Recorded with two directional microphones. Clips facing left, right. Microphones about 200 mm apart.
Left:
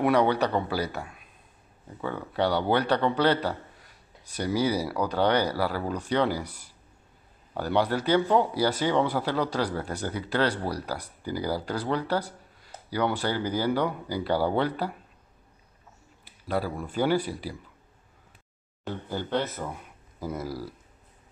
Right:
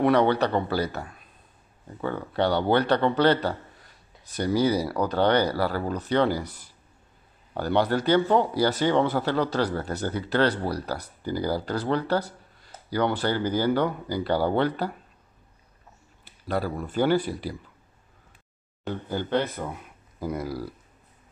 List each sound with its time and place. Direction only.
0.0 s speech: 10° left (ahead or behind)
16.3 s a sound: 10° left (ahead or behind)
16.8 s speech: 10° left (ahead or behind)
18.9 s speech: centre (ahead or behind)